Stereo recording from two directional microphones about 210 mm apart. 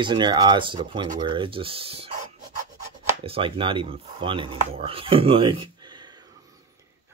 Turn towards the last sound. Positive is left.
turn(degrees=-20)  # may be behind; listen again after turning